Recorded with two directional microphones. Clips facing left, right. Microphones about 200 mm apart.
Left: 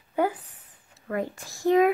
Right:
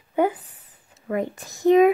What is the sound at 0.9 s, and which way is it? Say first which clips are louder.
Speech: right 4 dB; 20° right (ahead or behind).